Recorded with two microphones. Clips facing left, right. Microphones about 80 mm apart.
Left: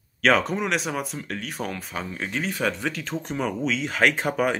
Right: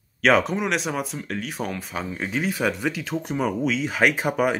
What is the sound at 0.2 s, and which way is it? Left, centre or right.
Speech, centre.